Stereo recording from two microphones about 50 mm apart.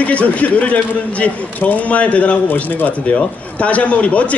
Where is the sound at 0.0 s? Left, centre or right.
Left.